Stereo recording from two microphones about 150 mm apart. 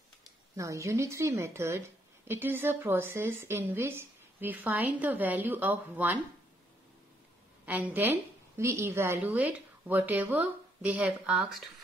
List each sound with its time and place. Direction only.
0.6 s a woman's voice: 20° right (ahead or behind)
7.6 s a woman's voice: 10° right (ahead or behind)